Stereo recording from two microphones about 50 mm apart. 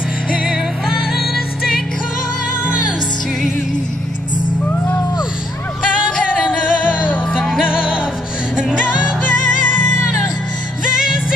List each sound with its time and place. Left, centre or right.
0.4 s music: centre
6.4 s music: left
7.6 s music: centre
9.2 s music: left